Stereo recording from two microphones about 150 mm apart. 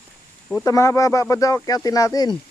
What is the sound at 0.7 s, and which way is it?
Speech, 20° left (ahead or behind).